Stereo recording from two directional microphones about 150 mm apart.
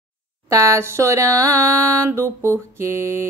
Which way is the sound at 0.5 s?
20° right (ahead or behind).